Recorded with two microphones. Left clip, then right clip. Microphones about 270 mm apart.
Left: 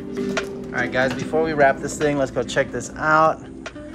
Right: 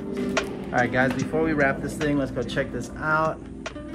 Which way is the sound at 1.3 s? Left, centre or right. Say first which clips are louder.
Left 9 dB; centre.